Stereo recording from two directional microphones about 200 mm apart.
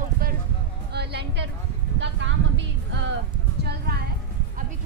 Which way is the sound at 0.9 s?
55° right (ahead or behind).